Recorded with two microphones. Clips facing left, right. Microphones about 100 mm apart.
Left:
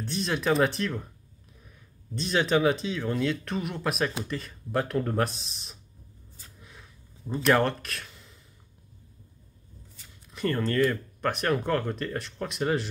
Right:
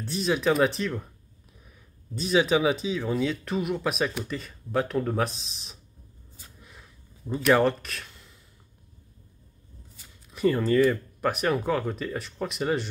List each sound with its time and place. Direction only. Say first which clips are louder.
0.0 s speech: right 3 dB; centre (ahead or behind)
2.1 s speech: right 2 dB; 5° right (ahead or behind)
6.3 s a sound: right 1 dB; centre (ahead or behind)
10.0 s speech: right 5 dB; 5° right (ahead or behind)